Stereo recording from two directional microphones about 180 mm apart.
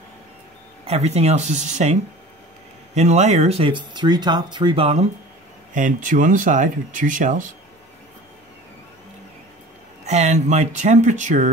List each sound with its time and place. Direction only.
0.8 s speech: 35° right (ahead or behind)
5.8 s speech: 45° right (ahead or behind)
10.0 s speech: 40° right (ahead or behind)